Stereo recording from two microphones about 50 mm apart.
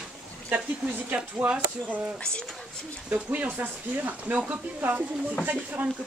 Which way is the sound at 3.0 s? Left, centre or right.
Right.